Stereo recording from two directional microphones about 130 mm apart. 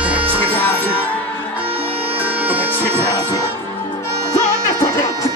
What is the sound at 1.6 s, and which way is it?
Music, 45° right (ahead or behind).